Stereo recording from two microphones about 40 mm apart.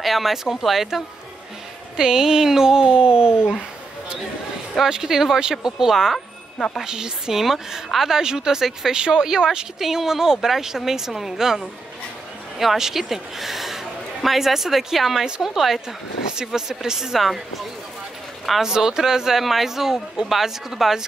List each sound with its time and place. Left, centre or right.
0.0 s speech: centre
2.0 s speech: centre
4.8 s a man's voice: centre
17.2 s speech: centre
18.6 s speech: centre